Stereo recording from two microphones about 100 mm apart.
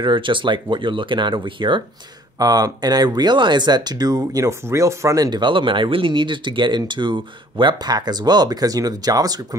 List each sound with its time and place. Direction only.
0.0 s speech: 55° right (ahead or behind)
2.3 s speech: 40° right (ahead or behind)
5.4 s speech: 55° right (ahead or behind); by 9.6 s 40° right (ahead or behind)